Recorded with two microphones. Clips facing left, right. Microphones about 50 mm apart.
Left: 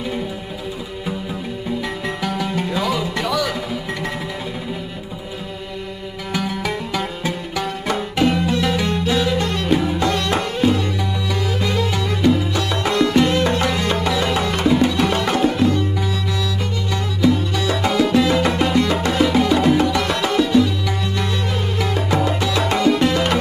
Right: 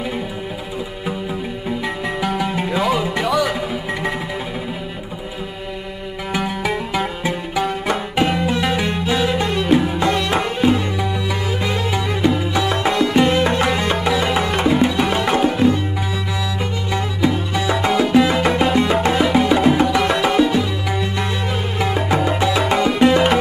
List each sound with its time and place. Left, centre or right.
2.2 s music: centre
6.3 s music: centre
16.9 s music: centre